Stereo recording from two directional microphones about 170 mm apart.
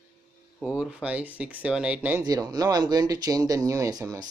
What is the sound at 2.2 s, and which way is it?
Speech, 20° right (ahead or behind).